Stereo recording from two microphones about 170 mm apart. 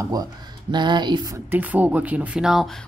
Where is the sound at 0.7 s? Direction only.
25° right (ahead or behind).